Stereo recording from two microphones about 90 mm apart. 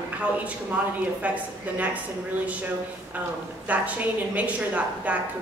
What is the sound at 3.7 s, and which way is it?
Speech, 15° right (ahead or behind).